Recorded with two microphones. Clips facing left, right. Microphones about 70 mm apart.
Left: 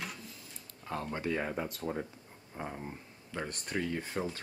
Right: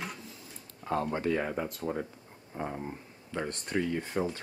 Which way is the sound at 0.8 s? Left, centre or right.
Right.